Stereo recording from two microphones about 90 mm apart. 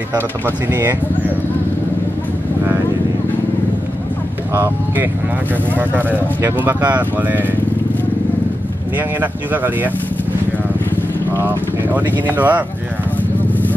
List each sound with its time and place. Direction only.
0.7 s speech: 25° right (ahead or behind)
5.8 s speech: 20° right (ahead or behind)
11.3 s speech: 20° right (ahead or behind)